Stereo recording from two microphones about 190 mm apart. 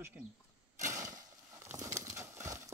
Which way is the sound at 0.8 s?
15° right (ahead or behind).